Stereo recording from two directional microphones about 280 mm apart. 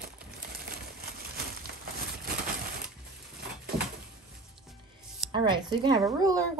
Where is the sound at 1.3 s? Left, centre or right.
Right.